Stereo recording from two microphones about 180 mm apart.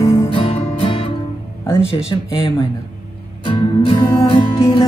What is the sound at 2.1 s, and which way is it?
Music, 20° left (ahead or behind).